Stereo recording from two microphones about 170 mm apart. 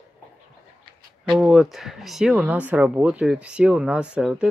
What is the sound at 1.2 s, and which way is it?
Speech, 5° right (ahead or behind).